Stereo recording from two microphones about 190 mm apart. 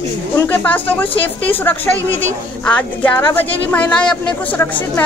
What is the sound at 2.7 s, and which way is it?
A woman's voice, 10° left (ahead or behind).